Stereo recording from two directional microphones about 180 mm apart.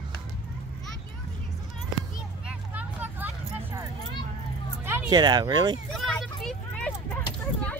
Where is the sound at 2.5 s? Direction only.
10° right (ahead or behind).